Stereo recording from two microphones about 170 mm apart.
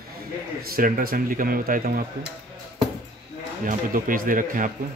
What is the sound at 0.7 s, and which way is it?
Speech, 55° right (ahead or behind).